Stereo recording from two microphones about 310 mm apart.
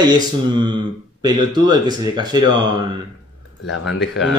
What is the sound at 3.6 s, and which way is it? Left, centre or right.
Speech, left.